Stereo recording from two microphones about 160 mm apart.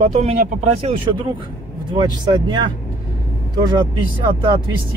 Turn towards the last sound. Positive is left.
turn(degrees=-30)  # may be behind; listen again after turning